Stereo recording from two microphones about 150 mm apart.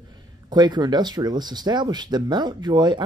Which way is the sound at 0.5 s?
30° right (ahead or behind).